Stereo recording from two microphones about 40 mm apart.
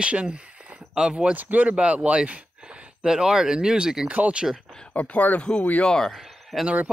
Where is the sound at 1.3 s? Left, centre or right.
Right.